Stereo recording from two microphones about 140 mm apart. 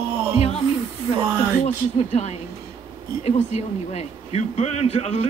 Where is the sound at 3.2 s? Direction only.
50° left (ahead or behind).